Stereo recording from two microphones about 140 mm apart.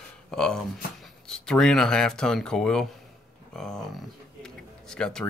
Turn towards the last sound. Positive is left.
turn(degrees=5)  # may be behind; listen again after turning